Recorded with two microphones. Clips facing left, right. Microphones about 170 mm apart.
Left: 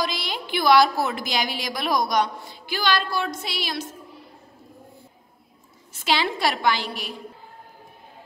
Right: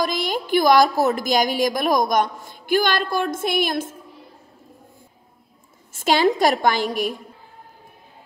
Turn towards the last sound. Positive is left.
turn(degrees=-45)  # may be behind; listen again after turning